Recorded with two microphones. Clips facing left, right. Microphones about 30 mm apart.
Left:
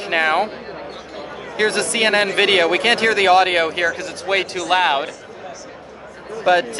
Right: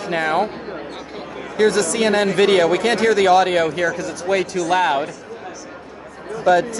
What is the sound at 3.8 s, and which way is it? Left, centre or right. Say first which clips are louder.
Speech: even; left.